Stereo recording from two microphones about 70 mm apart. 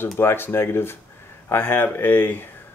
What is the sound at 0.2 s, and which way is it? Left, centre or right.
Speech, left.